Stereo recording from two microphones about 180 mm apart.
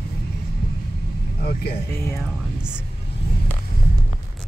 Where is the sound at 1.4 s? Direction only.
60° left (ahead or behind).